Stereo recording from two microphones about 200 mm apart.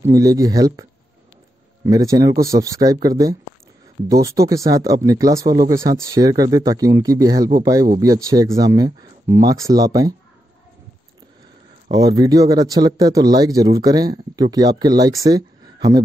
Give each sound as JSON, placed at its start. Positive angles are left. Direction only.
{"t": 0.1, "sound": "speech", "side_deg": -15}
{"t": 1.9, "sound": "speech", "side_deg": -15}
{"t": 11.9, "sound": "speech", "side_deg": -20}